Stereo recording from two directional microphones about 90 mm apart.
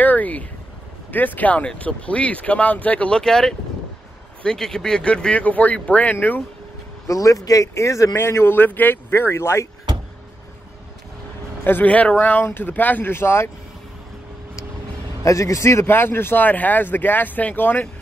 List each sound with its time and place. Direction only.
0.0 s a sound: 20° left (ahead or behind)
1.1 s speech: 20° left (ahead or behind)
7.1 s speech: 40° left (ahead or behind)
11.6 s speech: 20° left (ahead or behind)
15.2 s speech: 35° left (ahead or behind); by 17.8 s 20° left (ahead or behind)